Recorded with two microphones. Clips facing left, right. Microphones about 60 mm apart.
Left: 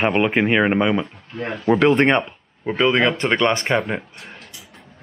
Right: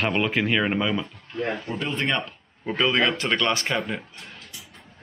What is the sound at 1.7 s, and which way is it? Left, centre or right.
Speech, left.